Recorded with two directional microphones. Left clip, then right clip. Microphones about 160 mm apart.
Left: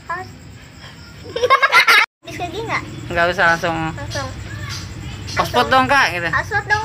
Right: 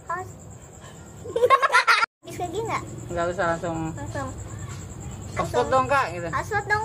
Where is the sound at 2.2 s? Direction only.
30° right (ahead or behind).